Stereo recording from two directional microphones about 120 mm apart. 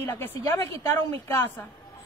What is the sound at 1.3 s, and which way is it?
Speech, 20° left (ahead or behind).